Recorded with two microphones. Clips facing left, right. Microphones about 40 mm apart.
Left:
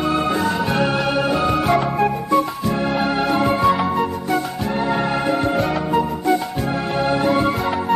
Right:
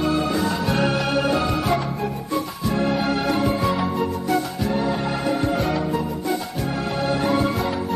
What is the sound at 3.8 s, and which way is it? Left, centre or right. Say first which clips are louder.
Music: left 3 dB; left.